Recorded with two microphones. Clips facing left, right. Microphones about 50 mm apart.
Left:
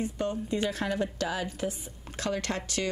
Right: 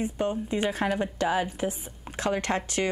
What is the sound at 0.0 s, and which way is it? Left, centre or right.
Speech, right.